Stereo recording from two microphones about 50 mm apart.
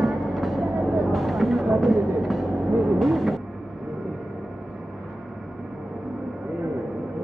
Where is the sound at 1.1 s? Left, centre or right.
Centre.